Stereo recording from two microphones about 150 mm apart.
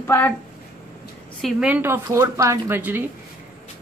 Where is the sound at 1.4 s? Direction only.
10° right (ahead or behind).